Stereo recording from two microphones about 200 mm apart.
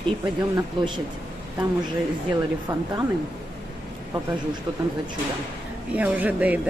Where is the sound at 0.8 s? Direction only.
25° right (ahead or behind).